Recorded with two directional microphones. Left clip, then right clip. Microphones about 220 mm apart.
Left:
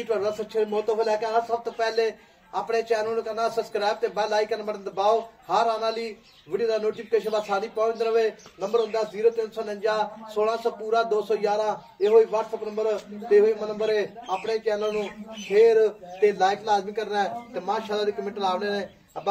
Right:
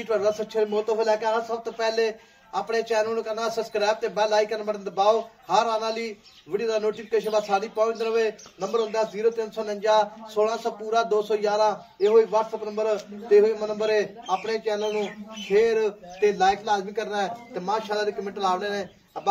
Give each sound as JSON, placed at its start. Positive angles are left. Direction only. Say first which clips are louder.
{"t": 0.1, "sound": "a man's voice", "louder": "right 3 dB", "side_deg": -15}
{"t": 15.5, "sound": "speech", "louder": "left 3 dB", "side_deg": -25}